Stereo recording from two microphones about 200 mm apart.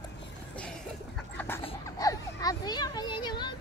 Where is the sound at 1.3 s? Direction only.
10° left (ahead or behind).